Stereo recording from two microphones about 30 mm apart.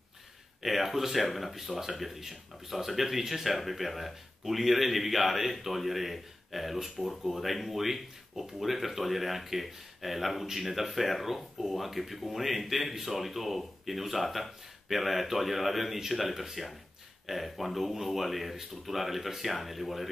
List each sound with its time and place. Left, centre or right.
0.6 s speech: centre